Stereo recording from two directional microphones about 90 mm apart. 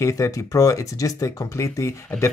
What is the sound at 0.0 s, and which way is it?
Speech, 35° left (ahead or behind).